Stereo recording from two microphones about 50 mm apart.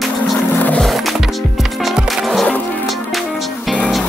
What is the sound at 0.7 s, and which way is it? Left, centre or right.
Music, centre.